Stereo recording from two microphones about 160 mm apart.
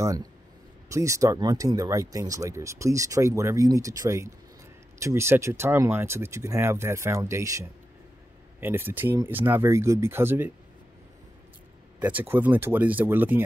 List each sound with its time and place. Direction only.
0.8 s speech: 20° right (ahead or behind)
12.0 s speech: 10° right (ahead or behind)